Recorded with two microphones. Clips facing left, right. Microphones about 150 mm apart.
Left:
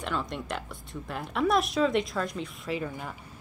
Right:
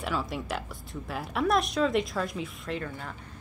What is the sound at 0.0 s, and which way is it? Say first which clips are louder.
Speech: right 1 dB; 5° right (ahead or behind).